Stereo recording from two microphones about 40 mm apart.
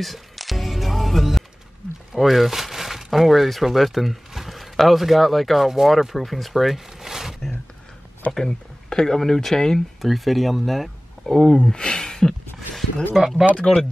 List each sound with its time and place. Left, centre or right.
0.0 s music: centre
2.1 s speech: centre
8.3 s speech: centre
10.0 s speech: centre
11.2 s speech: centre
13.1 s speech: centre